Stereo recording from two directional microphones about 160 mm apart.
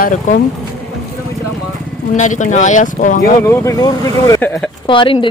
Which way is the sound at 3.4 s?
20° left (ahead or behind).